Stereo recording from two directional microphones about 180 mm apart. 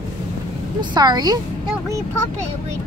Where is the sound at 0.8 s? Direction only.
25° right (ahead or behind).